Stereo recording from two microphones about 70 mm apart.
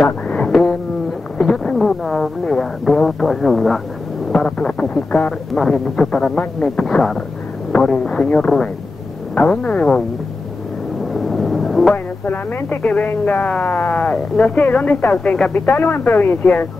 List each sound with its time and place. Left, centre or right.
0.5 s a sound: centre
1.4 s speech: centre
4.3 s speech: centre
5.5 s speech: centre
11.1 s a sound: centre
11.9 s speech: left
13.9 s speech: left
14.3 s speech: centre
14.7 s speech: left
15.8 s speech: left